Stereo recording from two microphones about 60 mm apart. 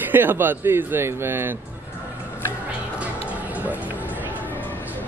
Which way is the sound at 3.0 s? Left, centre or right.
Right.